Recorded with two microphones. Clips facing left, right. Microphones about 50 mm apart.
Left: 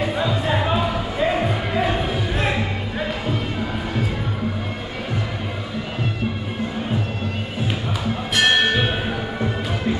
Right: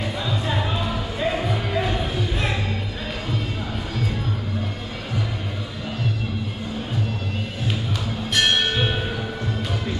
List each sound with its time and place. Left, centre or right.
0.0 s music: centre
8.4 s music: centre